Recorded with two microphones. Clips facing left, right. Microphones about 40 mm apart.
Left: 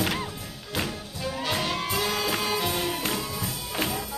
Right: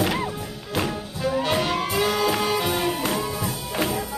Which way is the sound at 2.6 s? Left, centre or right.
Centre.